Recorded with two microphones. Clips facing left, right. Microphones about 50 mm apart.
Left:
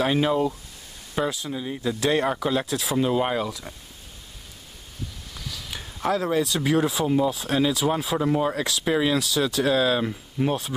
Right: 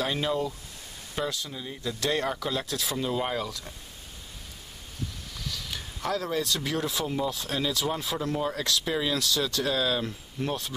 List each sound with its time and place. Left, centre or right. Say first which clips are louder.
0.0 s speech: left 6 dB; centre
3.0 s speech: left 7 dB; left
5.3 s speech: left 1 dB; centre